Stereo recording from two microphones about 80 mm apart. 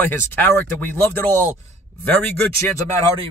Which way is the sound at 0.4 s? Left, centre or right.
Left.